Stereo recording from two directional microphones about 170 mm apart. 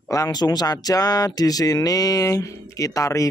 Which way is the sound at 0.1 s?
20° left (ahead or behind).